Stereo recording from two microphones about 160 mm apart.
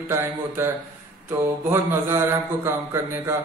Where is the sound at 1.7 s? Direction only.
15° right (ahead or behind).